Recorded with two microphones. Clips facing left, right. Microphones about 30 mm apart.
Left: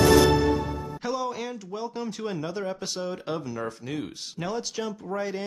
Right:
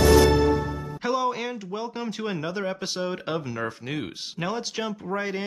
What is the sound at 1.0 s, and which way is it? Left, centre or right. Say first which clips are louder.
Speech: right 5 dB; centre.